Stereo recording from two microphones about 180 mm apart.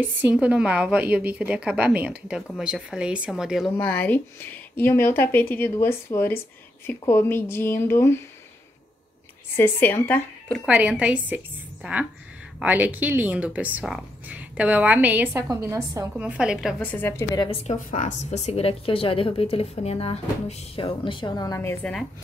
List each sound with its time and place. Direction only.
0.0 s speech: 10° right (ahead or behind)
3.7 s speech: 10° left (ahead or behind)
9.6 s speech: 10° left (ahead or behind)
10.6 s speech: 5° right (ahead or behind)
16.2 s speech: 5° right (ahead or behind)
16.8 s speech: 10° left (ahead or behind)
17.6 s a woman's voice: 45° left (ahead or behind); by 21.9 s 15° left (ahead or behind)